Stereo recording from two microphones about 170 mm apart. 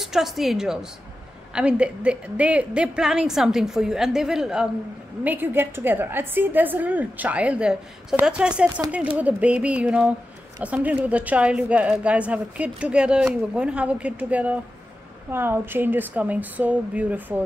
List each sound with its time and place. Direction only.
0.0 s a woman's voice: centre (ahead or behind)